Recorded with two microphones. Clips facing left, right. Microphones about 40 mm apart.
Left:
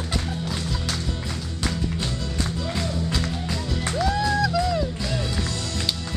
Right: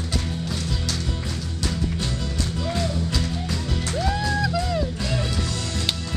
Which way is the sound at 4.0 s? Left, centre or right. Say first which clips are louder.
Left 2 dB; centre.